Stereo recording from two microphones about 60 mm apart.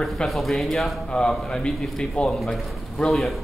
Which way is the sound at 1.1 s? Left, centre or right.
Centre.